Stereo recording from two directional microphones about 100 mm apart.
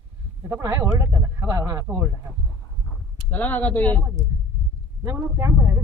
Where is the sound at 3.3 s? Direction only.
15° left (ahead or behind).